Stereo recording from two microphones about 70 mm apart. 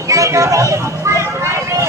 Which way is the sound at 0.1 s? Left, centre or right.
Right.